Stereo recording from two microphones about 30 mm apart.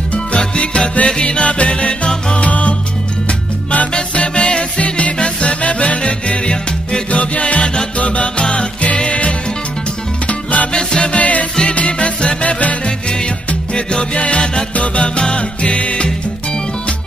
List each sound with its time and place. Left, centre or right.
0.4 s music: left
2.4 s salsa music: left
3.3 s music: left
4.1 s music: left
7.1 s music: left
10.2 s music: left
10.7 s music: left
11.1 s music: left
12.4 s music: left
14.1 s music: left